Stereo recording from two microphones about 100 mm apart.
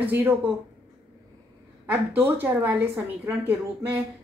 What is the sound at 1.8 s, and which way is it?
A woman's voice, 20° right (ahead or behind).